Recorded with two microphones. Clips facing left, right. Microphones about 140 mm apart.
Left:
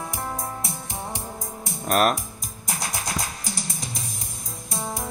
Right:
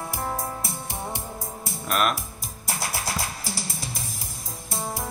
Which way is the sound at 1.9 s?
40° left (ahead or behind).